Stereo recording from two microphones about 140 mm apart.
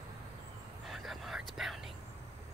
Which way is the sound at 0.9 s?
Centre (ahead or behind).